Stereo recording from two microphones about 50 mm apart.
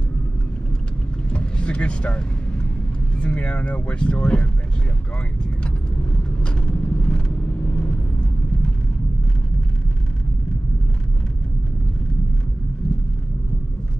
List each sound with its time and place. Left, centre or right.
1.3 s vehicle: left
3.2 s speech: left
6.4 s vehicle: left